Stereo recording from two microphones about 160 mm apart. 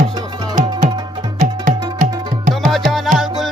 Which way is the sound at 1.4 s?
55° right (ahead or behind).